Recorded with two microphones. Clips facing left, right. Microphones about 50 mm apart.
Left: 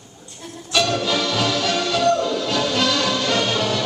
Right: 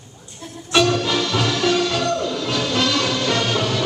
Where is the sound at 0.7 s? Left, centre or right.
Right.